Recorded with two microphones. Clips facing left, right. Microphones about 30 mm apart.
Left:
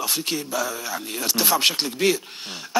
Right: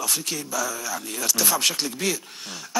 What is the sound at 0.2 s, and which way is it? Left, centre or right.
A man's voice, left.